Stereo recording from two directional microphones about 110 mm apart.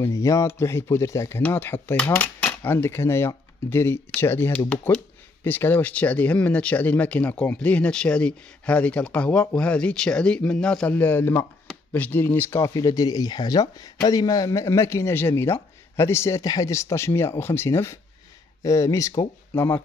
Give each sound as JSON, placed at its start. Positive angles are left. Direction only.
{"t": 0.0, "sound": "speech", "side_deg": 30}
{"t": 12.5, "sound": "speech", "side_deg": 30}